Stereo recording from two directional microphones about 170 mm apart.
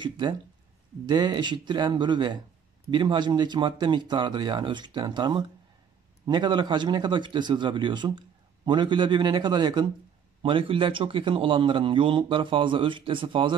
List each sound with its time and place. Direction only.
0.0 s a man's voice: 25° right (ahead or behind)